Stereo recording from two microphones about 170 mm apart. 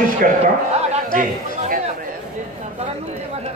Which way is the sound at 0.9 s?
50° right (ahead or behind).